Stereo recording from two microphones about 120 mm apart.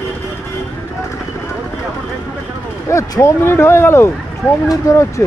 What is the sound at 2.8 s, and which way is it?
Speech, 25° left (ahead or behind).